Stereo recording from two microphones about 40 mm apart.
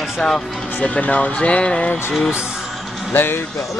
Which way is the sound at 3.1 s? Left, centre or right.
Left.